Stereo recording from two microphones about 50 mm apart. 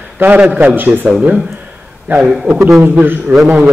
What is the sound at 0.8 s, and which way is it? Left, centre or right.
Speech, right.